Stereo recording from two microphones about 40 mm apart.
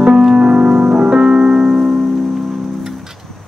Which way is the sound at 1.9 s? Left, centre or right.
Centre.